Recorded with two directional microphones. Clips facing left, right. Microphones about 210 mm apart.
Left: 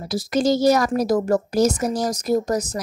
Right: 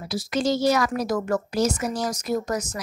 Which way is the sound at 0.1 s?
40° left (ahead or behind).